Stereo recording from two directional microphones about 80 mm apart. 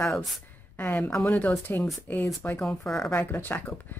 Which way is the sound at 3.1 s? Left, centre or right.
Left.